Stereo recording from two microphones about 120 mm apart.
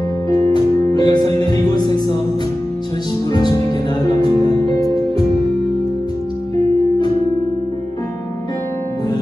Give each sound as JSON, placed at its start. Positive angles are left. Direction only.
{"t": 0.9, "sound": "music", "side_deg": 35}
{"t": 4.4, "sound": "music", "side_deg": 30}